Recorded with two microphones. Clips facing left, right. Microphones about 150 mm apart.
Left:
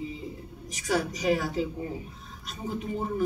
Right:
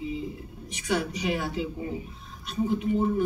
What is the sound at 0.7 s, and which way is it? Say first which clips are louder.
Speech: even; 40° left (ahead or behind).